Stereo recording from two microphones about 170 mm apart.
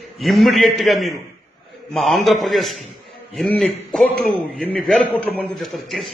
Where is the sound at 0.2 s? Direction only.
Centre (ahead or behind).